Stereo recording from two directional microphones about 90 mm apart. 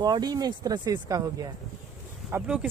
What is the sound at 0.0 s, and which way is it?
Speech, 50° right (ahead or behind).